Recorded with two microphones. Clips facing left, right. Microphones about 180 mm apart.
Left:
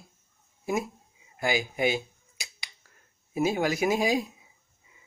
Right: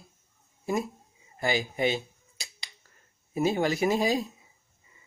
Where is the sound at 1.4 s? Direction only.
5° left (ahead or behind).